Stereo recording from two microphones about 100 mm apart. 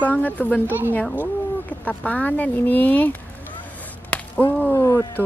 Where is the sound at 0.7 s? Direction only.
20° right (ahead or behind).